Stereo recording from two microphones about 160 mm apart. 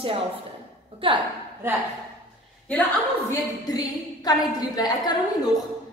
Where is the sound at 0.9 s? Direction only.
30° right (ahead or behind).